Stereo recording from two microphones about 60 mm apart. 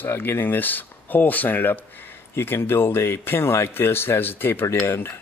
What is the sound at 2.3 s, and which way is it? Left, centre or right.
Speech, left.